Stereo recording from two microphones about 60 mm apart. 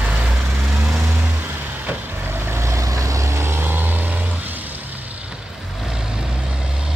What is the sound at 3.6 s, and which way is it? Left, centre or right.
Vehicle, right.